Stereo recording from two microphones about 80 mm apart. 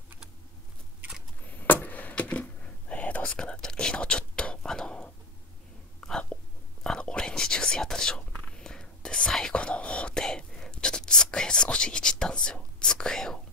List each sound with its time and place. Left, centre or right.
1.5 s whispering: left
5.9 s a sound: centre
6.8 s whispering: centre